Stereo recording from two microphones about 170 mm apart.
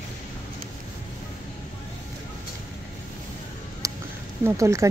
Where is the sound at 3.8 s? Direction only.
20° right (ahead or behind).